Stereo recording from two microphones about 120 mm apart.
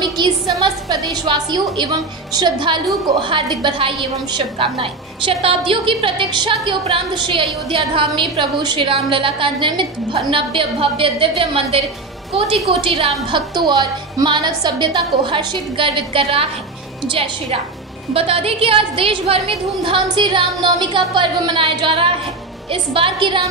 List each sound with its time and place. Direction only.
1.1 s a woman's voice: 40° right (ahead or behind)
13.3 s a woman's voice: 40° right (ahead or behind)